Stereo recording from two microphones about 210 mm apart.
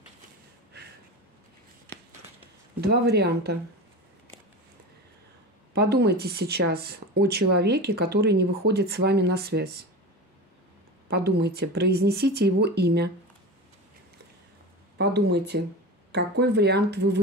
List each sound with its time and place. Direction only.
2.8 s speech: 50° right (ahead or behind)
5.7 s speech: 50° right (ahead or behind)
11.1 s speech: 50° right (ahead or behind)
15.0 s speech: 50° right (ahead or behind)